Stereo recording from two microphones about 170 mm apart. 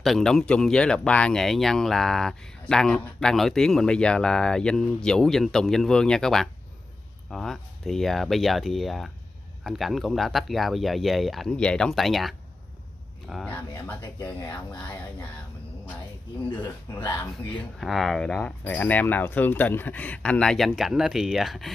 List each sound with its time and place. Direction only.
0.0 s speech: centre (ahead or behind)
13.8 s speech: 10° left (ahead or behind)
16.9 s speech: 15° left (ahead or behind)
17.6 s speech: centre (ahead or behind)